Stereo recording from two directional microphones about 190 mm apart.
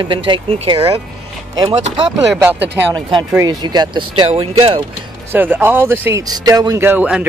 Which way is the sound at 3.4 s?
20° right (ahead or behind).